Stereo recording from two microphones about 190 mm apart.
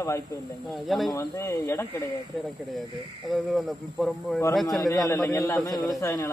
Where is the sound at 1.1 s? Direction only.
15° left (ahead or behind).